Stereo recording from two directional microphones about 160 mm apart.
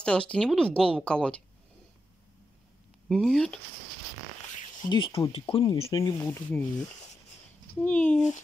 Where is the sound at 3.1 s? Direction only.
Centre (ahead or behind).